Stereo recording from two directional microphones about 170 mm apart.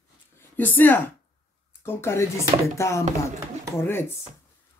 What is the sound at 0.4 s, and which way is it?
Speech, 10° left (ahead or behind).